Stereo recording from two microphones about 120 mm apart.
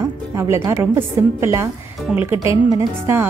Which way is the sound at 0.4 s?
20° right (ahead or behind).